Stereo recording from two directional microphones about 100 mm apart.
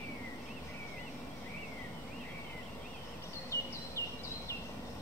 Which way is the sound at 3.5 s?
30° left (ahead or behind).